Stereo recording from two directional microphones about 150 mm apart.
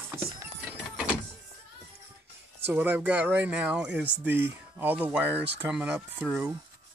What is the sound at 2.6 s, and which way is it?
Speech, 10° right (ahead or behind).